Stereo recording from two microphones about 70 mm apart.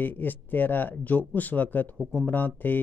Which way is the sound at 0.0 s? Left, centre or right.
Left.